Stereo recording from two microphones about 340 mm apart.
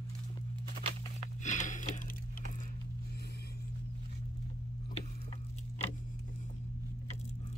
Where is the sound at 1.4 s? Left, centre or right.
Left.